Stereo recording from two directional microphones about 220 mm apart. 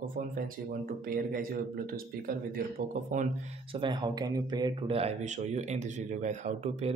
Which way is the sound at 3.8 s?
20° right (ahead or behind).